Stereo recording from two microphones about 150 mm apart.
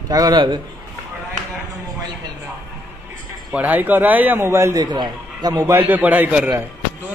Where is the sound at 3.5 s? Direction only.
10° right (ahead or behind); by 5.7 s 25° right (ahead or behind).